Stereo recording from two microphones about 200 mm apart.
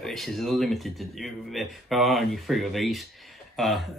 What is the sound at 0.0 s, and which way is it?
Speech, centre (ahead or behind).